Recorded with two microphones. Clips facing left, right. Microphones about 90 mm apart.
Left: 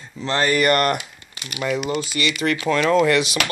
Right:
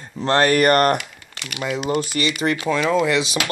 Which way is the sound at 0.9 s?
65° right (ahead or behind).